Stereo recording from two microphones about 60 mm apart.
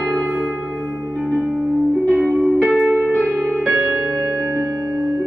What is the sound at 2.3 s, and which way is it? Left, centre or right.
Music, centre.